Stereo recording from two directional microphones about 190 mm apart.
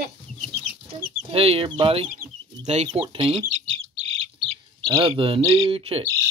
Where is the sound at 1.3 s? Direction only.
30° right (ahead or behind).